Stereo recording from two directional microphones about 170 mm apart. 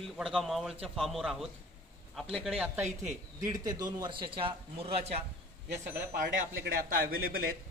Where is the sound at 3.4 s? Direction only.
20° right (ahead or behind).